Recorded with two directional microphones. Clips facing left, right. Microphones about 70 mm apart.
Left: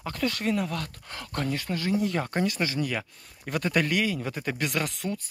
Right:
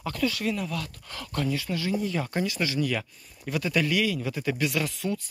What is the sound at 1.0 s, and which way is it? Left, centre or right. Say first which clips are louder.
Speech: right 2 dB; left.